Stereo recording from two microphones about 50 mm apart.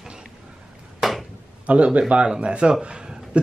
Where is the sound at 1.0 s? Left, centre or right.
Centre.